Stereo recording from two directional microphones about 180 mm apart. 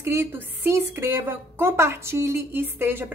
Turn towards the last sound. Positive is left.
turn(degrees=-10)  # may be behind; listen again after turning